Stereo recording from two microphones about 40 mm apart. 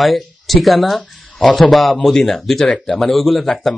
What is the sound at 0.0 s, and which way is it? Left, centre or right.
Speech, centre.